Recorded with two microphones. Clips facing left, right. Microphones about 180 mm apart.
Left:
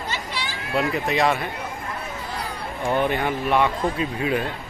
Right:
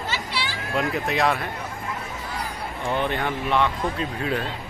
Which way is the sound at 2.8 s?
10° left (ahead or behind).